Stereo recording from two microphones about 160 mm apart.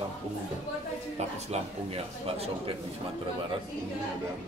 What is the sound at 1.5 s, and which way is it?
A man's voice, 40° right (ahead or behind).